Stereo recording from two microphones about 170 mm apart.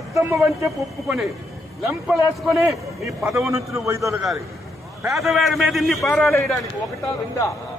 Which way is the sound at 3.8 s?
15° right (ahead or behind).